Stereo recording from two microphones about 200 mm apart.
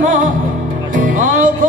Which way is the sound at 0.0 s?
40° right (ahead or behind).